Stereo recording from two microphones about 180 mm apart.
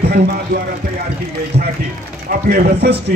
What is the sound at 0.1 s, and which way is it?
Speech, 60° right (ahead or behind).